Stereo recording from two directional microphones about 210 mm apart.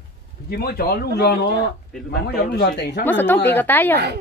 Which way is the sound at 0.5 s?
45° left (ahead or behind).